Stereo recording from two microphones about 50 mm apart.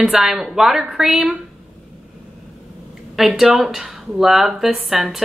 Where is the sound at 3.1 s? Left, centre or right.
Centre.